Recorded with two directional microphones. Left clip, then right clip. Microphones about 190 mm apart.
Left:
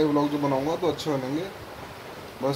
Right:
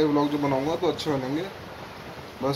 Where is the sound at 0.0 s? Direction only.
10° left (ahead or behind).